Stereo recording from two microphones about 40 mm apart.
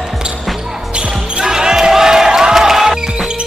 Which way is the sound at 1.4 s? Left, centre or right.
Centre.